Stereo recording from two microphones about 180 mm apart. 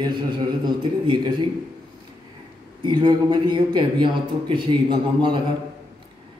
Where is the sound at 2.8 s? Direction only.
25° right (ahead or behind).